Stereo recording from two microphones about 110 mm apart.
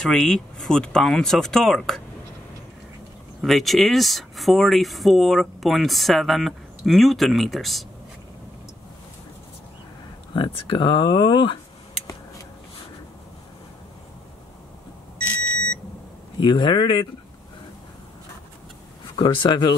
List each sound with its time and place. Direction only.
0.0 s speech: 5° left (ahead or behind)
3.3 s speech: centre (ahead or behind)
10.3 s speech: 45° left (ahead or behind)
16.3 s speech: 45° left (ahead or behind)
19.1 s speech: 45° left (ahead or behind)